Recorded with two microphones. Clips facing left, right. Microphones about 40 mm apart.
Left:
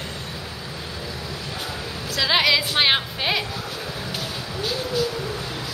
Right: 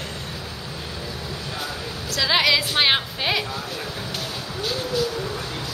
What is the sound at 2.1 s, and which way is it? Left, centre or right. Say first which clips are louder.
Speech: even; centre.